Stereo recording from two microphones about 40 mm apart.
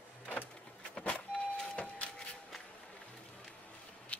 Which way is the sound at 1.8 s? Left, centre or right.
Left.